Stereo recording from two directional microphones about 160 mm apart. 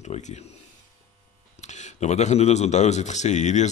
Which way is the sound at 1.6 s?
45° left (ahead or behind).